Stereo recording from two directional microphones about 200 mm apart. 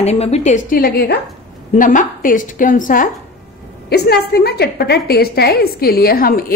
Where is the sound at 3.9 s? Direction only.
50° left (ahead or behind).